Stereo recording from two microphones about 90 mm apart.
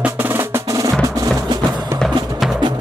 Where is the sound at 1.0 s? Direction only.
40° right (ahead or behind).